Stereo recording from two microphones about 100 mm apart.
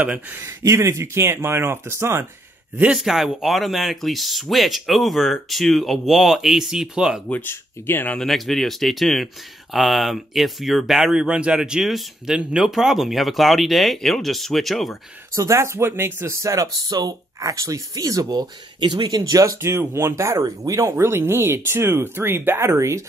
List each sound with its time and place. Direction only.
0.0 s speech: 20° right (ahead or behind)
2.8 s speech: 5° right (ahead or behind)
7.2 s speech: 20° left (ahead or behind)
8.2 s speech: centre (ahead or behind)
15.3 s speech: 30° right (ahead or behind)
16.4 s speech: 35° right (ahead or behind)